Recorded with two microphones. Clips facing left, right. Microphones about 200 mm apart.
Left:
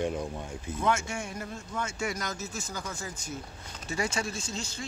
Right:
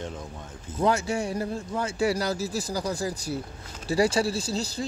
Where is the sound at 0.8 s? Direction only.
35° right (ahead or behind).